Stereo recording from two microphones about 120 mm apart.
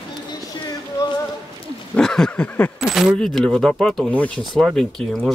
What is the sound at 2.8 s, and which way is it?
Speech, 5° right (ahead or behind).